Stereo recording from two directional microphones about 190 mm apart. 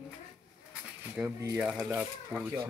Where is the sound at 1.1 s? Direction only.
5° right (ahead or behind).